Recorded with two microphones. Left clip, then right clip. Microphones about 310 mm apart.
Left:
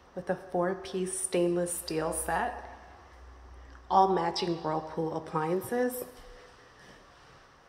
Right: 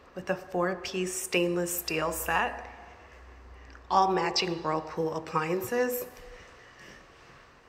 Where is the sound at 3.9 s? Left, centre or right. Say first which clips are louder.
Even; centre.